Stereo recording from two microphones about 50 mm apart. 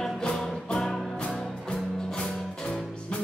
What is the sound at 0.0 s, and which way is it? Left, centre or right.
Music, centre.